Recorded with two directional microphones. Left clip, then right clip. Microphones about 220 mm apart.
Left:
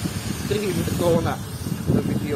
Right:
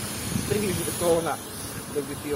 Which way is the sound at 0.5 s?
50° left (ahead or behind).